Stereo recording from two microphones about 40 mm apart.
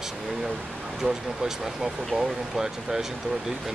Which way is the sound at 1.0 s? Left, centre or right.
Centre.